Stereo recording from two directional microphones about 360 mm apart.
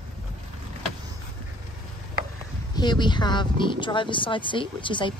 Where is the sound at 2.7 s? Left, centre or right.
Centre.